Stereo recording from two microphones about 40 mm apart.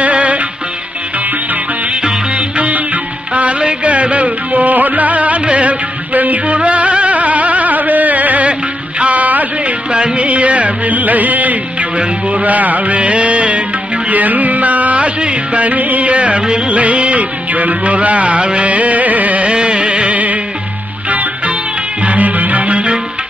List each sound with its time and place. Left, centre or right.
0.0 s music: right
2.3 s music: right
9.8 s music: right
12.0 s music: right
12.4 s music: right
14.0 s music: right
19.4 s music: right